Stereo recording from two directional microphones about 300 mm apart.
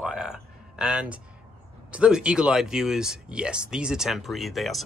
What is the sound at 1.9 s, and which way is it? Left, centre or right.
Speech, centre.